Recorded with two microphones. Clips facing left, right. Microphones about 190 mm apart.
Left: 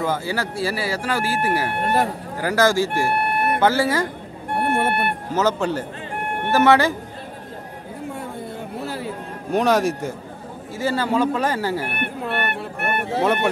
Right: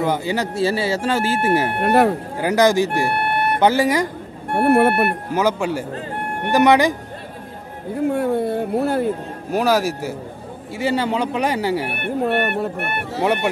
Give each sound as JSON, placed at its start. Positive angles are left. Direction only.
{"t": 0.0, "sound": "speech", "side_deg": -20}
{"t": 1.8, "sound": "speech", "side_deg": -65}
{"t": 2.3, "sound": "speech", "side_deg": -20}
{"t": 4.6, "sound": "speech", "side_deg": -65}
{"t": 5.3, "sound": "speech", "side_deg": -10}
{"t": 8.1, "sound": "a sound", "side_deg": -65}
{"t": 9.5, "sound": "a man's voice", "side_deg": -5}
{"t": 10.8, "sound": "speech", "side_deg": -20}
{"t": 12.2, "sound": "speech", "side_deg": -45}
{"t": 13.2, "sound": "speech", "side_deg": -10}